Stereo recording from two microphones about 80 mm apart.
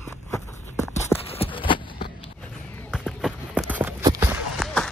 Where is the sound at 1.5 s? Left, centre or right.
Left.